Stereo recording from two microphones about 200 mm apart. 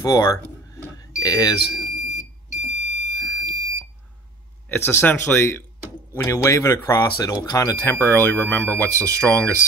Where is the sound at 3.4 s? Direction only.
15° right (ahead or behind).